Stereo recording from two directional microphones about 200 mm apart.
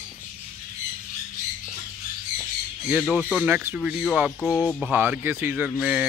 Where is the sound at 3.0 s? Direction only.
Centre (ahead or behind).